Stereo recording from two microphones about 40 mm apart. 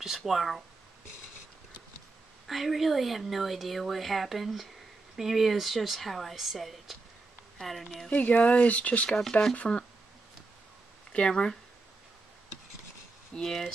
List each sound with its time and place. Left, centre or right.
0.2 s speech: centre
2.4 s speech: centre
8.1 s speech: left
9.6 s speech: left
11.1 s speech: left
13.3 s speech: centre